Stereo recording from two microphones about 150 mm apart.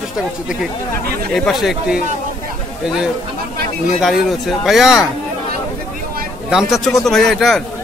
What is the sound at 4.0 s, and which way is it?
Speech, centre (ahead or behind).